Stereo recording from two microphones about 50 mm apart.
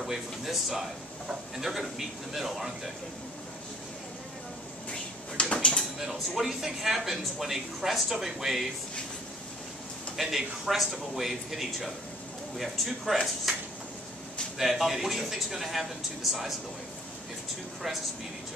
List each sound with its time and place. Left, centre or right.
0.0 s speech: centre
4.9 s a sound: centre
5.9 s speech: centre
10.1 s speech: centre
14.6 s speech: centre